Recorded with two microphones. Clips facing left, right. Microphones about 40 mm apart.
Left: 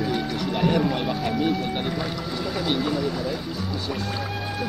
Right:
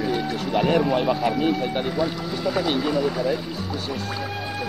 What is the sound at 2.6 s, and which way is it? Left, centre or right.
Speech, centre.